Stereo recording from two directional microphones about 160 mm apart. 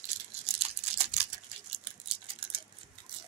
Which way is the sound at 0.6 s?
40° right (ahead or behind).